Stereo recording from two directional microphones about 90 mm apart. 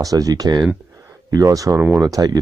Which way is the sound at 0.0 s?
40° right (ahead or behind).